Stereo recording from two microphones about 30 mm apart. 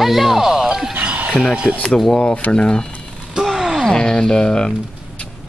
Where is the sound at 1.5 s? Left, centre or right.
Right.